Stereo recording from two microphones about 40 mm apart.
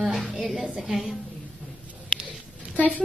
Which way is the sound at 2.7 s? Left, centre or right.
Left.